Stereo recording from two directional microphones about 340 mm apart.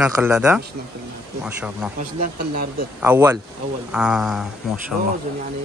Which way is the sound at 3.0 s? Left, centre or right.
Centre.